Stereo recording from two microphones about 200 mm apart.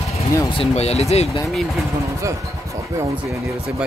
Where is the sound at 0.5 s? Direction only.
30° left (ahead or behind).